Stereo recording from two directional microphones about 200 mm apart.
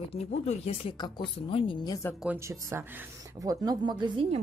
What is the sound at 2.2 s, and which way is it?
Speech, 10° right (ahead or behind).